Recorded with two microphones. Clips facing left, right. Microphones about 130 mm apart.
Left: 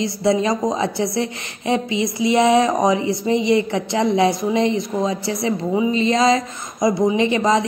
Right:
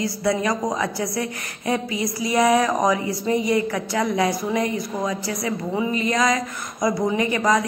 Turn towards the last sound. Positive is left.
turn(degrees=25)  # may be behind; listen again after turning